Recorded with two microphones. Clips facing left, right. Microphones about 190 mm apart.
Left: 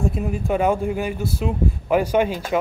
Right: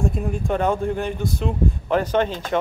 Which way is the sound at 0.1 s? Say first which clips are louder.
Left 1 dB; 5° left (ahead or behind).